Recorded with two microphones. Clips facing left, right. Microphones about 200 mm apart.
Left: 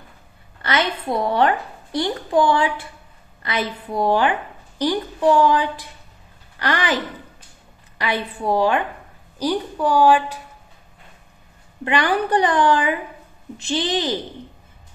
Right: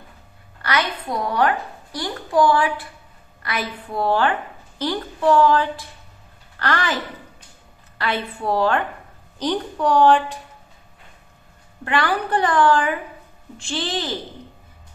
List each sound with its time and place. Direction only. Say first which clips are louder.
0.6 s a woman's voice: left 2 dB; 25° left (ahead or behind)
8.0 s a woman's voice: left 1 dB; 15° left (ahead or behind)
11.8 s a woman's voice: left 2 dB; 20° left (ahead or behind)